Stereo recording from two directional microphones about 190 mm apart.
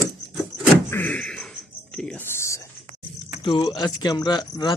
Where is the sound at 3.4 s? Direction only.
25° left (ahead or behind).